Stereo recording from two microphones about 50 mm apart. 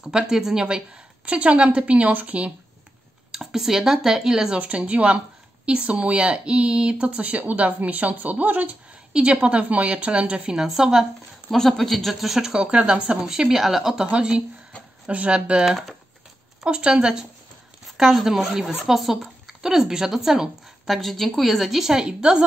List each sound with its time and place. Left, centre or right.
0.0 s a woman's voice: centre
1.2 s speech: right
3.3 s a woman's voice: centre; by 8.7 s right
9.1 s speech: right
11.5 s a woman's voice: centre; by 13.2 s right
13.3 s a woman's voice: centre
14.1 s speech: centre
15.6 s speech: centre
16.6 s a woman's voice: centre